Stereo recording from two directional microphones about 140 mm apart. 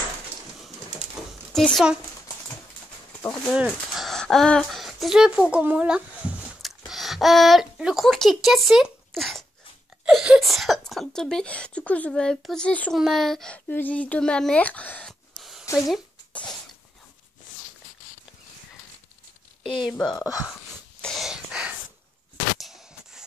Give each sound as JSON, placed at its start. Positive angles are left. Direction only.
{"t": 1.5, "sound": "a child's voice", "side_deg": 5}
{"t": 3.2, "sound": "speech", "side_deg": 10}
{"t": 19.9, "sound": "speech", "side_deg": 5}
{"t": 20.2, "sound": "speech", "side_deg": 25}
{"t": 21.0, "sound": "a sound", "side_deg": 0}